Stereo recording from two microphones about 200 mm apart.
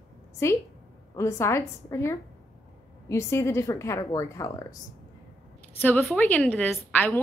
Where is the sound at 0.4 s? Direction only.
15° left (ahead or behind).